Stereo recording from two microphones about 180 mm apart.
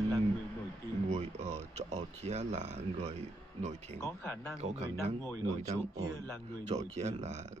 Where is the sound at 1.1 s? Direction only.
40° right (ahead or behind).